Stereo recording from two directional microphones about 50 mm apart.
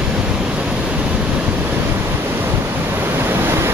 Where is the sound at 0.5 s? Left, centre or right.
Right.